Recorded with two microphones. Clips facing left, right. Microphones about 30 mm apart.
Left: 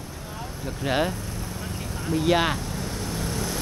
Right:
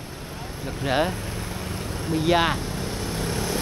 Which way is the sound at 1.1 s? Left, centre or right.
Right.